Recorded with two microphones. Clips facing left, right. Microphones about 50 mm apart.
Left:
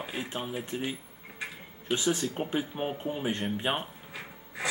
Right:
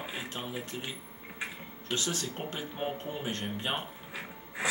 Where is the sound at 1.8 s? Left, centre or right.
Centre.